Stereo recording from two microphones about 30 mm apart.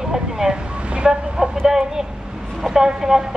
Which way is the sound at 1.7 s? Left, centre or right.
Centre.